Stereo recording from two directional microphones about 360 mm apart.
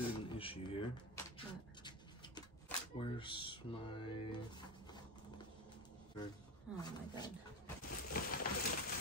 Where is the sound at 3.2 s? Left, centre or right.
Centre.